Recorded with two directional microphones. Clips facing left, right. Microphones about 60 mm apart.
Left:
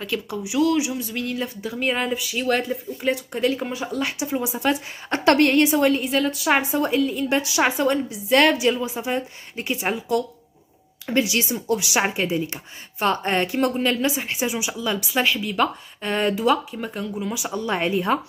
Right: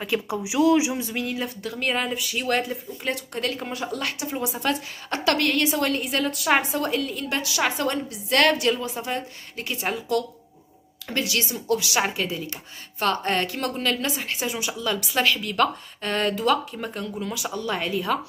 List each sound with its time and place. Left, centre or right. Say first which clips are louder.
0.0 s speech: right 1 dB; centre
1.1 s speech: left 1 dB; centre
1.6 s a woman's voice: left 3 dB; centre
5.1 s a woman's voice: left 6 dB; left
5.7 s a woman's voice: left 5 dB; centre
5.9 s a woman's voice: left 3 dB; centre
7.2 s a woman's voice: left 4 dB; left
9.6 s a woman's voice: left 3 dB; left